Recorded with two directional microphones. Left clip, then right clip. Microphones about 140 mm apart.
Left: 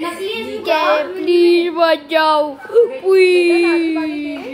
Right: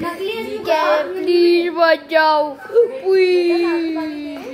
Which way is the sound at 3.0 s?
25° left (ahead or behind).